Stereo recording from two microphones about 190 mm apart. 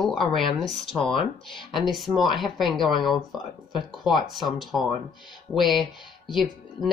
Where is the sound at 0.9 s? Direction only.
30° left (ahead or behind).